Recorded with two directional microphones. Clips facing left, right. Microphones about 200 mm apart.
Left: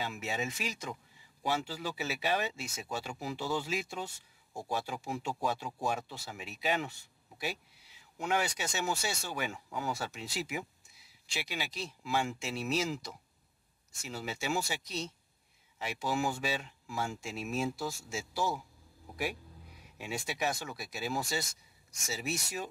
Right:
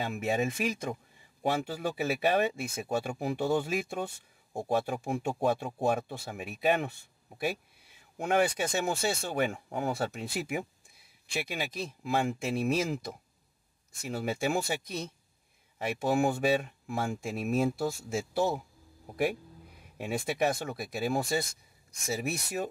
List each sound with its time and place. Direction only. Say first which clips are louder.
0.0 s speech: right 7 dB; 55° right (ahead or behind)
19.8 s speech: right 6 dB; 55° right (ahead or behind)